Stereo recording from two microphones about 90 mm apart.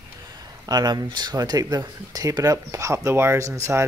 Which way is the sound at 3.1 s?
25° right (ahead or behind).